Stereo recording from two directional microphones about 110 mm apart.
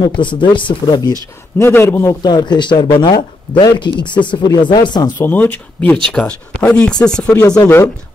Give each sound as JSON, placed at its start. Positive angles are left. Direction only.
{"t": 0.0, "sound": "speech", "side_deg": 45}
{"t": 1.6, "sound": "a man's voice", "side_deg": 20}
{"t": 2.2, "sound": "speech", "side_deg": 40}
{"t": 5.2, "sound": "speech", "side_deg": 15}
{"t": 7.3, "sound": "speech", "side_deg": 30}